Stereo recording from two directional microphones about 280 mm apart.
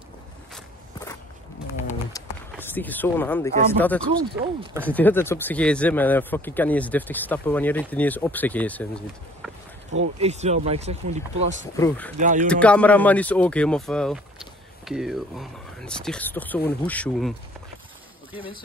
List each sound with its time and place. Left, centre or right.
2.1 s a sound: centre
3.7 s a man's voice: centre
9.9 s speech: right
11.7 s speech: centre
12.2 s speech: right
12.4 s a man's voice: centre